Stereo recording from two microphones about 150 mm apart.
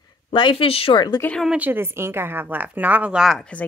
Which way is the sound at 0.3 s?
35° left (ahead or behind).